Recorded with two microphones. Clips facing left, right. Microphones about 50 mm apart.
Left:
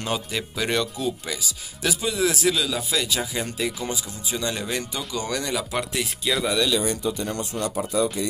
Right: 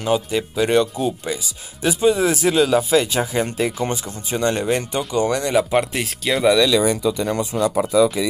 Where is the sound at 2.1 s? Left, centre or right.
Right.